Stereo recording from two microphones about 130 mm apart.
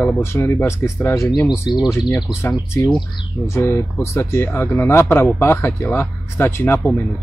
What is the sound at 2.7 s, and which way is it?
Speech, 20° left (ahead or behind).